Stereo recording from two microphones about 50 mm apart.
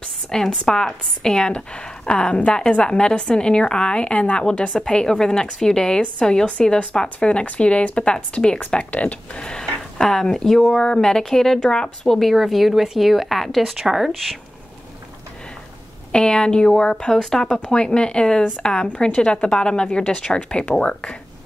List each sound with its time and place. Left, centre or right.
0.3 s a woman's voice: centre
16.1 s a woman's voice: centre